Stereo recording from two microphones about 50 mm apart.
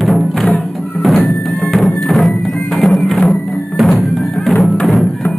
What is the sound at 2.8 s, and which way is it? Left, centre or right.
Music, centre.